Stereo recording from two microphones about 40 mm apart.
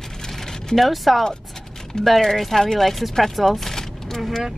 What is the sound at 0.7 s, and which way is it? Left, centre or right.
Speech, centre.